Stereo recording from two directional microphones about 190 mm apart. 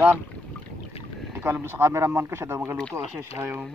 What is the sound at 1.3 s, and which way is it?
Speech, 10° right (ahead or behind).